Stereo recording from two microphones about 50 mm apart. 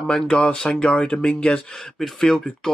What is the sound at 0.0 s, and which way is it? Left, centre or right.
Speech, centre.